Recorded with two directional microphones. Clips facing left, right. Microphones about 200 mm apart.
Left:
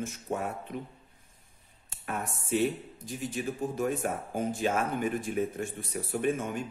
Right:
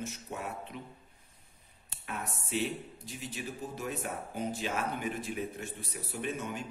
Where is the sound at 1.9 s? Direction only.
50° left (ahead or behind).